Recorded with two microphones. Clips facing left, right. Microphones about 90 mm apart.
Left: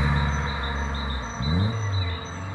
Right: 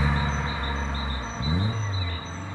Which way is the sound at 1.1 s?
15° left (ahead or behind).